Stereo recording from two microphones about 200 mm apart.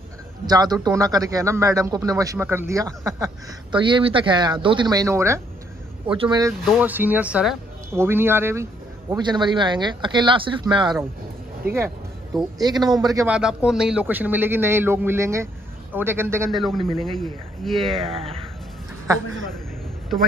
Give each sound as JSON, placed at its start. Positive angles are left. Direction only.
{"t": 0.5, "sound": "speech", "side_deg": -20}
{"t": 6.6, "sound": "speech", "side_deg": -5}
{"t": 11.6, "sound": "speech", "side_deg": -50}
{"t": 12.4, "sound": "speech", "side_deg": -20}
{"t": 13.4, "sound": "speech", "side_deg": -5}
{"t": 16.4, "sound": "speech", "side_deg": 0}
{"t": 18.1, "sound": "speech", "side_deg": -30}